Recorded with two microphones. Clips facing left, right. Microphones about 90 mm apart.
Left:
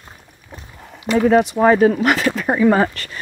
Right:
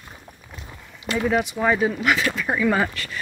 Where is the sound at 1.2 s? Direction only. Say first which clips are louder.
Left 8 dB; 40° left (ahead or behind).